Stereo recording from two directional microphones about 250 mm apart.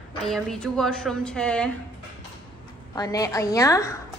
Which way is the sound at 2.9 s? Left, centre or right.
Centre.